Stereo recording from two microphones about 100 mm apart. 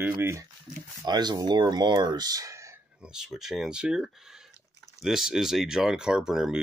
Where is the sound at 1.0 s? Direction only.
45° right (ahead or behind).